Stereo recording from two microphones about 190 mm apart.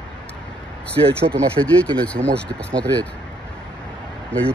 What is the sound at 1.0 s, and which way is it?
Speech, 25° right (ahead or behind).